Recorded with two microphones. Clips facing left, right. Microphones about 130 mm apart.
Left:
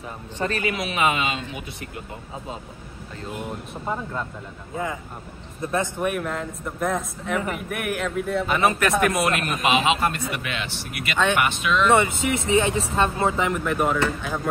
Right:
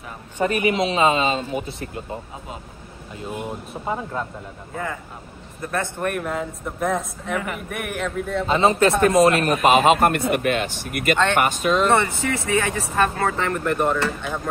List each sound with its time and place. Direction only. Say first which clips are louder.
0.4 s speech: right 6 dB; 15° right (ahead or behind)
3.8 s speech: right 2 dB; 10° right (ahead or behind)
5.6 s speech: left 1 dB; 25° left (ahead or behind)
5.9 s speech: right 1 dB; 5° left (ahead or behind)
8.5 s speech: right 6 dB; 25° right (ahead or behind); by 11.9 s 40° right (ahead or behind)
11.9 s speech: left 1 dB; 15° left (ahead or behind)
13.5 s speech: right 1 dB; 5° left (ahead or behind)